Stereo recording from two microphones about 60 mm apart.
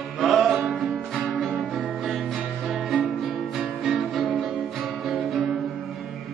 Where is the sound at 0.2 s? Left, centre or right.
Centre.